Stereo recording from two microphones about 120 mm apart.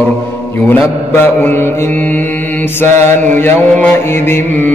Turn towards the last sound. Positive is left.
turn(degrees=15)  # may be behind; listen again after turning